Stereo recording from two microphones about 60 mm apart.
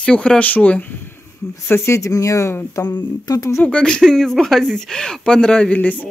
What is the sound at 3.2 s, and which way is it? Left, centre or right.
Speech, left.